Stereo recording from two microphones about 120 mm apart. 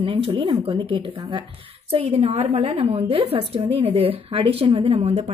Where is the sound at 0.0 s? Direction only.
45° right (ahead or behind).